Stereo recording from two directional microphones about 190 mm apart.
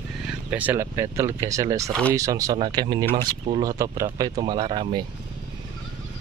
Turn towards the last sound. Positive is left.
turn(degrees=-25)  # may be behind; listen again after turning